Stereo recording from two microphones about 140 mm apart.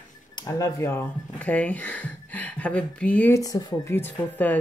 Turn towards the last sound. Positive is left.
turn(degrees=15)  # may be behind; listen again after turning